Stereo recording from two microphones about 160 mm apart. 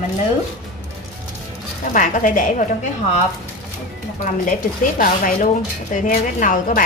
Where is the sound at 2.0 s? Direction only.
55° left (ahead or behind).